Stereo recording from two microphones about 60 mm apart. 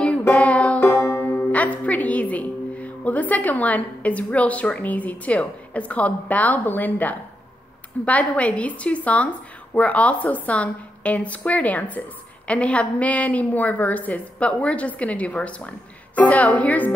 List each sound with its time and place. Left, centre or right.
0.3 s music: left
0.8 s banjo: left
1.2 s a woman's voice: left